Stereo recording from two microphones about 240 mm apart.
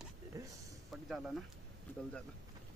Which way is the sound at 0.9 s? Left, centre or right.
Centre.